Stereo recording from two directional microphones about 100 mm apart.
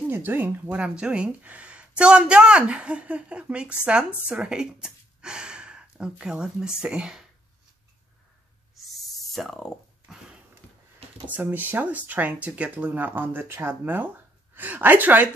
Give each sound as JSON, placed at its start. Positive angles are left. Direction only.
{"t": 0.1, "sound": "speech", "side_deg": -20}
{"t": 8.7, "sound": "owl", "side_deg": 0}
{"t": 11.2, "sound": "speech", "side_deg": -15}